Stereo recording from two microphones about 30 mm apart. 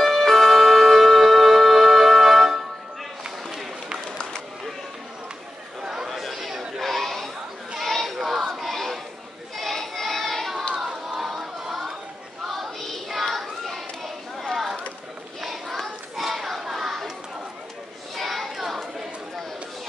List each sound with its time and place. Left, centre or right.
0.0 s music: centre
6.0 s chatter: centre
7.8 s a sound: centre
9.6 s child singing: centre
11.1 s crowd: centre
11.6 s chatter: centre
12.4 s child singing: centre
14.5 s a sound: centre
15.4 s child singing: centre
18.1 s a sound: centre